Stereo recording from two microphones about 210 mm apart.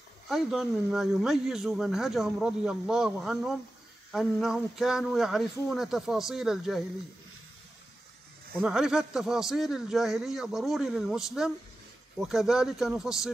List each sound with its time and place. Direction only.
0.3 s speech: centre (ahead or behind)
8.5 s speech: centre (ahead or behind)